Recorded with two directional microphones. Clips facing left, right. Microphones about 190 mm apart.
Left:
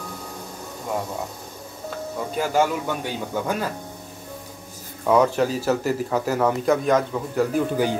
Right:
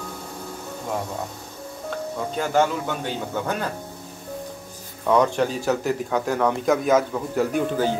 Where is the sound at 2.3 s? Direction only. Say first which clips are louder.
Even; 10° left (ahead or behind).